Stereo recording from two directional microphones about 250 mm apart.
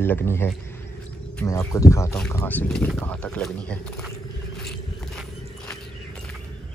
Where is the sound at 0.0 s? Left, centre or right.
Centre.